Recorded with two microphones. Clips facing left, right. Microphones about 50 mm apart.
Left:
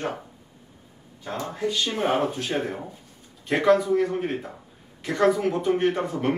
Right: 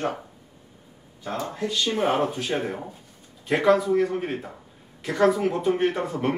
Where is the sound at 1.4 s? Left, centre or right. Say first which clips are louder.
Left 1 dB; centre.